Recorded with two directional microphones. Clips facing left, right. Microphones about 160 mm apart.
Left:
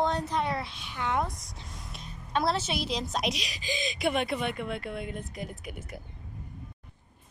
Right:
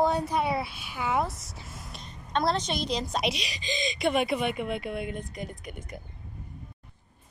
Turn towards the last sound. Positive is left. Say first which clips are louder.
# even
turn(degrees=5)  # may be behind; listen again after turning